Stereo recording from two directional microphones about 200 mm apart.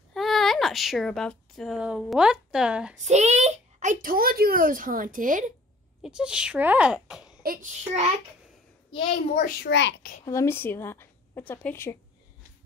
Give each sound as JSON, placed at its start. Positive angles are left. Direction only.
{"t": 0.1, "sound": "speech", "side_deg": 0}
{"t": 3.0, "sound": "a child's voice", "side_deg": -35}
{"t": 6.0, "sound": "a child's voice", "side_deg": -5}
{"t": 7.4, "sound": "a child's voice", "side_deg": -40}
{"t": 8.9, "sound": "a child's voice", "side_deg": 25}
{"t": 9.4, "sound": "a child's voice", "side_deg": 55}
{"t": 10.2, "sound": "a woman's voice", "side_deg": 15}